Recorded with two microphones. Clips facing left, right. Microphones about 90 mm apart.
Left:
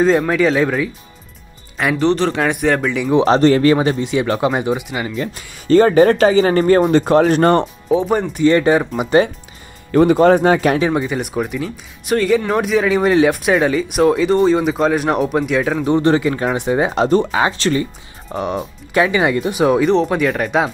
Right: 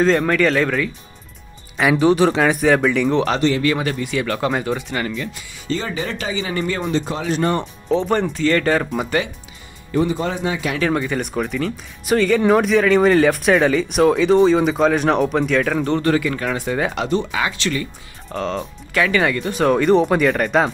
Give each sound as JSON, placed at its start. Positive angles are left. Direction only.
{"t": 0.0, "sound": "speech", "side_deg": 5}
{"t": 1.8, "sound": "speech", "side_deg": -5}
{"t": 3.3, "sound": "speech", "side_deg": 40}
{"t": 3.7, "sound": "speech", "side_deg": 25}
{"t": 5.1, "sound": "speech", "side_deg": 45}
{"t": 7.9, "sound": "speech", "side_deg": 10}
{"t": 9.8, "sound": "speech", "side_deg": 60}
{"t": 10.8, "sound": "speech", "side_deg": 15}
{"t": 16.0, "sound": "speech", "side_deg": 25}
{"t": 17.0, "sound": "speech", "side_deg": 40}
{"t": 18.3, "sound": "speech", "side_deg": 15}